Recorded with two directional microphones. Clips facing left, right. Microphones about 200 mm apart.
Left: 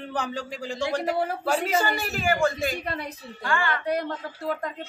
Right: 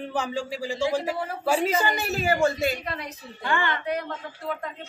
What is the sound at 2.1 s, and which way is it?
Speech, 25° right (ahead or behind).